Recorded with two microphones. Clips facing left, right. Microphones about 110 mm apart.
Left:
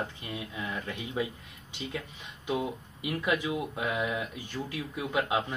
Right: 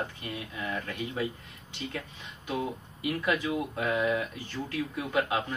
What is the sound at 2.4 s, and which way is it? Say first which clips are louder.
Speech: left 1 dB; 15° left (ahead or behind).